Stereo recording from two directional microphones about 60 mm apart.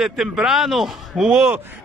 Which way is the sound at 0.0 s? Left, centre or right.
Centre.